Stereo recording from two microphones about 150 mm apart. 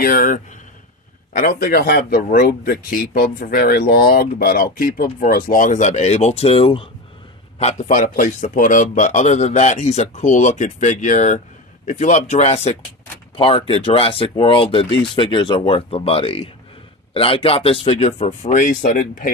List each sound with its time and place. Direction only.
0.0 s speech: 65° left (ahead or behind); by 6.9 s 40° left (ahead or behind)
7.5 s speech: 50° left (ahead or behind)
18.4 s speech: 60° left (ahead or behind)